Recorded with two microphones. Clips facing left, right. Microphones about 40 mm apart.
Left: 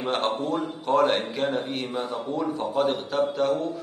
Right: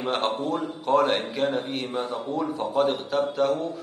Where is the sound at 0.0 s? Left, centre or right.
Centre.